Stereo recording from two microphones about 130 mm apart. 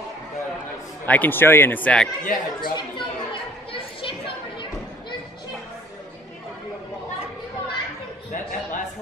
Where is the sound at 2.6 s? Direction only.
35° left (ahead or behind).